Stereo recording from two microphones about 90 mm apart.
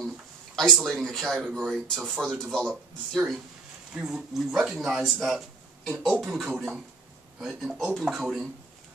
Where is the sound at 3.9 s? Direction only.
5° right (ahead or behind).